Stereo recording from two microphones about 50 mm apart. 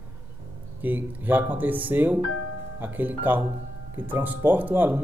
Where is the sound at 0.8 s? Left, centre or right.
Right.